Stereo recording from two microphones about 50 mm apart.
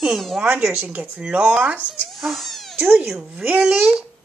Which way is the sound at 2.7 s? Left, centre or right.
Right.